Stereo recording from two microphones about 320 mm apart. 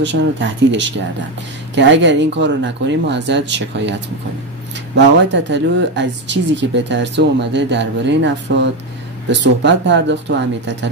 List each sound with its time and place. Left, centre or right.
0.0 s speech: right
4.9 s speech: right
9.3 s speech: right